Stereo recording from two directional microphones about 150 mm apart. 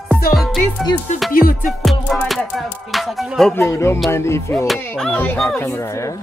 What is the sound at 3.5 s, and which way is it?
Music, 20° left (ahead or behind).